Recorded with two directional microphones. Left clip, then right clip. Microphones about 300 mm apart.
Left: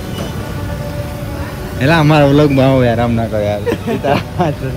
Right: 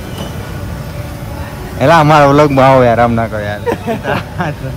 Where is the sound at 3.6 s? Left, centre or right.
Centre.